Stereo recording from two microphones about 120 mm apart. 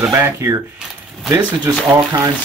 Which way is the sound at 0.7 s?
5° right (ahead or behind).